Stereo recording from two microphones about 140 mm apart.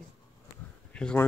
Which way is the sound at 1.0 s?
5° left (ahead or behind).